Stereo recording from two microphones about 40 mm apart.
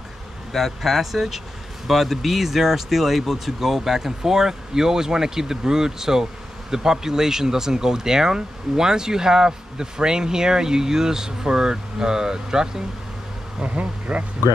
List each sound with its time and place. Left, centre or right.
0.6 s speech: centre
13.6 s speech: right